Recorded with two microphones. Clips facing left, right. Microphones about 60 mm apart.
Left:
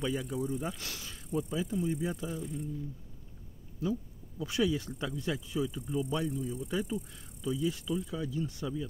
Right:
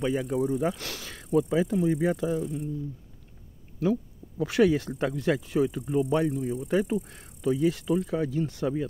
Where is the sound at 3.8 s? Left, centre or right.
Right.